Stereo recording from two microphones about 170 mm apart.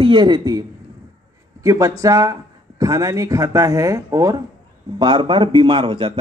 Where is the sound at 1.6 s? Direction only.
20° right (ahead or behind).